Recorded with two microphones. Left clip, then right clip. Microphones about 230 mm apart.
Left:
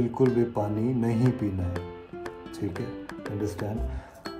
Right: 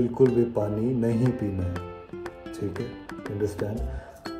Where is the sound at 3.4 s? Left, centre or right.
Centre.